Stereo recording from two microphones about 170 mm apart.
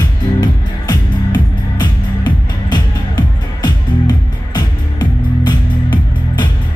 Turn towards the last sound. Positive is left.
turn(degrees=25)  # may be behind; listen again after turning